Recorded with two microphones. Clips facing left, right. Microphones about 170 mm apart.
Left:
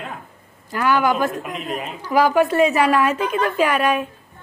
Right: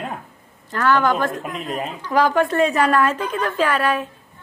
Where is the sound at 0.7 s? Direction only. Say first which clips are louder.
Even; 10° left (ahead or behind).